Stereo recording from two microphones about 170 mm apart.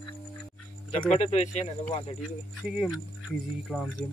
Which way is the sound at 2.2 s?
Centre (ahead or behind).